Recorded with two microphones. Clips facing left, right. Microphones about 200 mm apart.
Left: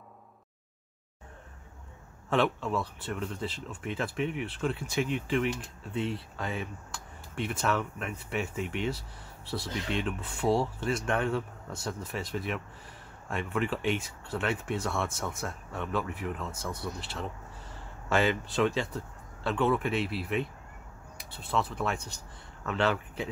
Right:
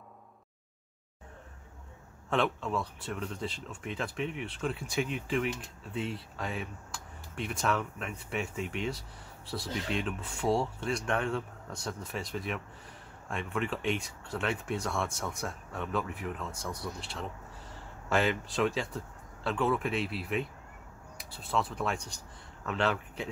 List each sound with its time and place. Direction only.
2.2 s speech: centre (ahead or behind)